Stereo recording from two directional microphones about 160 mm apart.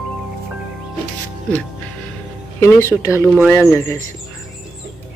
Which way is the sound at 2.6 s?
15° left (ahead or behind).